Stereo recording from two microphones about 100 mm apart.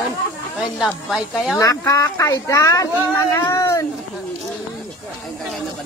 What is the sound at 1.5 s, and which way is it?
Speech, 30° left (ahead or behind).